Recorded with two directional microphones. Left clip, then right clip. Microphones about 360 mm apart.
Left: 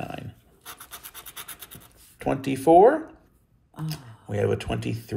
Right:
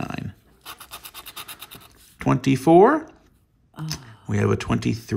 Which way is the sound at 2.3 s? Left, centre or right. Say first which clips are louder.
Right 1 dB; centre.